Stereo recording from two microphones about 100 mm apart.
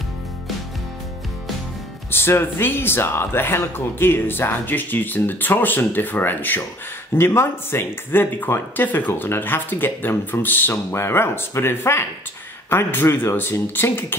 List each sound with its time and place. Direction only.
2.0 s speech: 25° left (ahead or behind)